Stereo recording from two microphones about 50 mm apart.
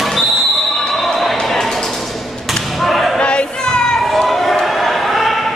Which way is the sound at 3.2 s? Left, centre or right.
Left.